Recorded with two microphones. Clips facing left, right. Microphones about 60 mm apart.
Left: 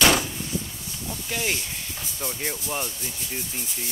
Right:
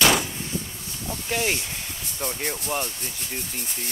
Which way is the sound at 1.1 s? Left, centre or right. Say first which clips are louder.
Right 4 dB; right.